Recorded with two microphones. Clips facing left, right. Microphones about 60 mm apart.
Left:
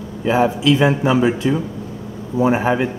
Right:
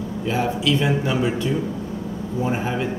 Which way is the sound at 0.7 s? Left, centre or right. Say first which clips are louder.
Left 6 dB; left.